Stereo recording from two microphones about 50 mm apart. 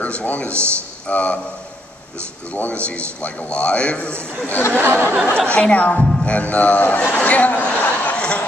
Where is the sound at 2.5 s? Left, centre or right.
Left.